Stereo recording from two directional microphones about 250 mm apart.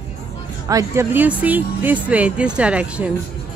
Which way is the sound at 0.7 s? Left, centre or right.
Centre.